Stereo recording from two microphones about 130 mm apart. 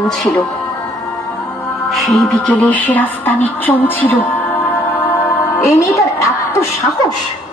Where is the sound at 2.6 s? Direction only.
10° left (ahead or behind).